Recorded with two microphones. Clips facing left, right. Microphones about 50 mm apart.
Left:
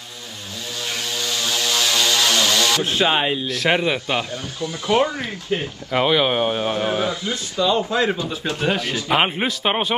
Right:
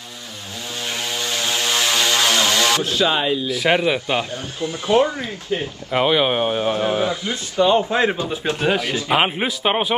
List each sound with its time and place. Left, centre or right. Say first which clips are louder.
0.8 s vehicle: right 1 dB; right
2.8 s speech: even; left
3.4 s speech: right 2 dB; centre
4.2 s speech: right 1 dB; right
5.0 s speech: right 1 dB; left
5.9 s speech: right 1 dB; centre
6.7 s a man's voice: right 2 dB; right
8.6 s speech: right 1 dB; centre